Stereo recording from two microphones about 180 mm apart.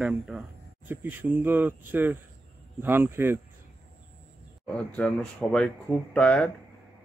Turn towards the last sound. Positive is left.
turn(degrees=5)  # may be behind; listen again after turning